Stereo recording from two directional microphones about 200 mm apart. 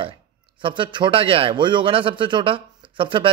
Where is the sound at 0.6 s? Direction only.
25° right (ahead or behind).